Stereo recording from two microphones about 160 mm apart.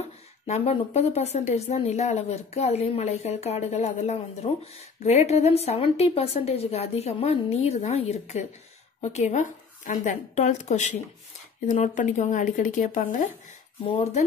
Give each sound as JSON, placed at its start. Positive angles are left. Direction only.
{"t": 0.5, "sound": "a woman's voice", "side_deg": 40}
{"t": 13.8, "sound": "speech", "side_deg": 30}